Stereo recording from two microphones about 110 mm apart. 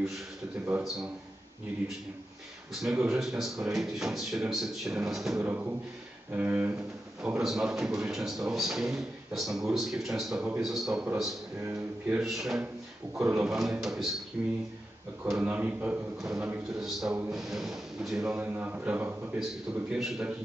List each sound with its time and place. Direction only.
0.7 s a man's voice: 15° right (ahead or behind)
2.8 s a man's voice: 5° right (ahead or behind)
5.4 s a man's voice: 15° right (ahead or behind)
12.1 s a man's voice: 5° right (ahead or behind)
13.2 s speech: 20° right (ahead or behind)
13.5 s a man's voice: centre (ahead or behind)
18.2 s a man's voice: 20° right (ahead or behind)